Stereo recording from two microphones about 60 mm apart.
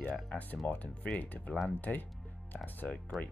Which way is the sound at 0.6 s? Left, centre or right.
Left.